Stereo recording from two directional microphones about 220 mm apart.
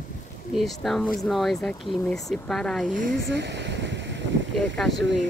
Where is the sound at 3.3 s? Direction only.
50° right (ahead or behind).